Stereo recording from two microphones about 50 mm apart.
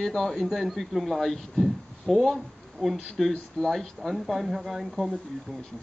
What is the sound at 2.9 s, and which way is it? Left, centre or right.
Speech, centre.